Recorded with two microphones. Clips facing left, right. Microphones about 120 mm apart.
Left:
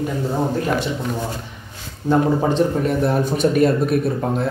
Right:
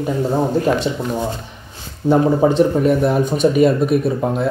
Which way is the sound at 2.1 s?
10° right (ahead or behind).